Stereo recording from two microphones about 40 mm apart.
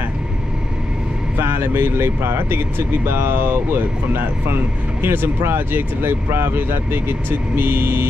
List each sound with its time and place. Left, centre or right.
1.4 s speech: right
3.1 s speech: right
5.0 s speech: right